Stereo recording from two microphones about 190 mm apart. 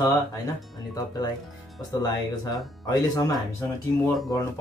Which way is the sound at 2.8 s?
20° left (ahead or behind).